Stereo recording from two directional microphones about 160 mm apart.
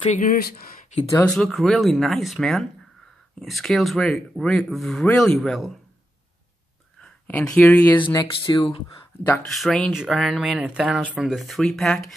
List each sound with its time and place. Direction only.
0.1 s speech: 55° left (ahead or behind)
1.2 s speech: 5° left (ahead or behind)
7.0 s speech: 10° left (ahead or behind)
8.1 s speech: 20° left (ahead or behind)
9.5 s speech: centre (ahead or behind)